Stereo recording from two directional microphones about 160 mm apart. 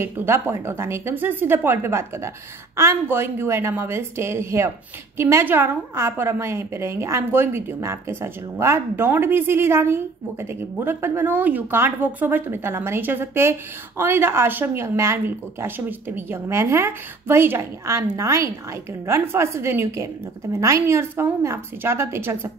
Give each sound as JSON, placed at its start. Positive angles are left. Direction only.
{"t": 0.0, "sound": "speech", "side_deg": -15}